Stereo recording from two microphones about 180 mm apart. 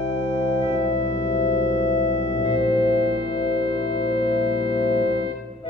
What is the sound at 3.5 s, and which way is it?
Music, 30° left (ahead or behind).